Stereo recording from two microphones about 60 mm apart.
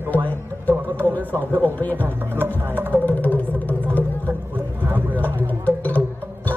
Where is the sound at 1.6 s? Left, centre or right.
Left.